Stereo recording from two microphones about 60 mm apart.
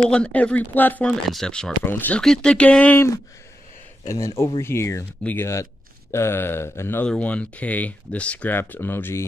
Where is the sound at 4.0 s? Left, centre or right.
Left.